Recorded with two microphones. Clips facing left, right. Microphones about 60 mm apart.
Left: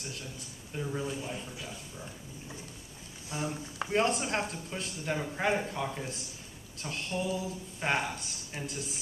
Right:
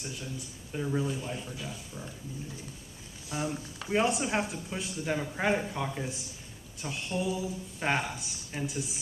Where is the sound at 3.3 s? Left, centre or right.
Right.